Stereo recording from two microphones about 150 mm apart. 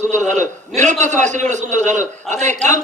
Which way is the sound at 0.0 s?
55° right (ahead or behind).